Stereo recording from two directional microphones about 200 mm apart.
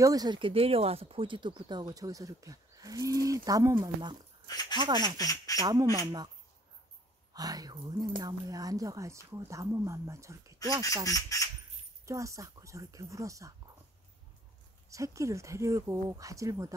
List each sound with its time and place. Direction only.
0.0 s speech: 20° right (ahead or behind)
4.5 s speech: 20° left (ahead or behind)
4.7 s speech: 20° right (ahead or behind)
5.1 s speech: 15° left (ahead or behind)
5.6 s speech: 20° right (ahead or behind)
7.3 s speech: 20° right (ahead or behind)
11.1 s speech: 15° left (ahead or behind)
12.1 s speech: 15° right (ahead or behind)
14.9 s speech: 15° right (ahead or behind)